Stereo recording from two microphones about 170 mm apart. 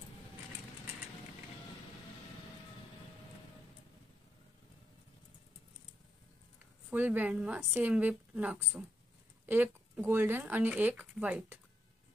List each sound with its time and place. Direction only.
6.9 s speech: 10° right (ahead or behind)